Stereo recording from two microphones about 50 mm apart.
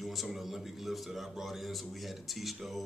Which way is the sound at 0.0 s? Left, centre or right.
Centre.